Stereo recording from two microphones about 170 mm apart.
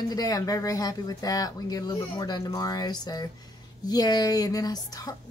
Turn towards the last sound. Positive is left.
turn(degrees=20)  # may be behind; listen again after turning